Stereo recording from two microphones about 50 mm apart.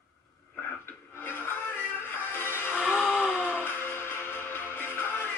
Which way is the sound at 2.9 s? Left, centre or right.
Centre.